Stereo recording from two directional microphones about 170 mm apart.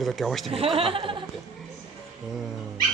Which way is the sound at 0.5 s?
35° right (ahead or behind).